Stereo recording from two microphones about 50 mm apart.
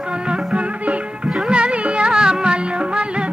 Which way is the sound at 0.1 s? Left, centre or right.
Centre.